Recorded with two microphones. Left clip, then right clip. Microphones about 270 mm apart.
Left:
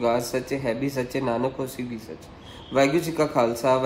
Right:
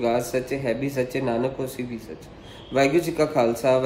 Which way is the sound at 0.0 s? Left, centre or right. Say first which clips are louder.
Even; centre.